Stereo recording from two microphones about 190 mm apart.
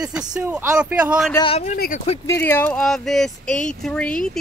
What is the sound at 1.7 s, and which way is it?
Speech, 45° left (ahead or behind).